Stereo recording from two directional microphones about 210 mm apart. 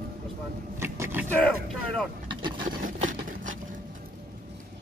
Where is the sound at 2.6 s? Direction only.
40° right (ahead or behind).